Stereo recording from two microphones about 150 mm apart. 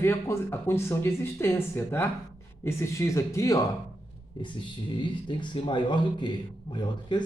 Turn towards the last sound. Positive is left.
turn(degrees=30)  # may be behind; listen again after turning